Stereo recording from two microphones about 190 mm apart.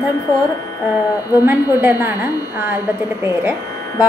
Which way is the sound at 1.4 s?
10° right (ahead or behind).